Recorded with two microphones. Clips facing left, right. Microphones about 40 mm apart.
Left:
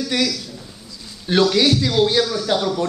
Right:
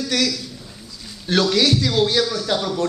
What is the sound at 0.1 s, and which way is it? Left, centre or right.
Speech, centre.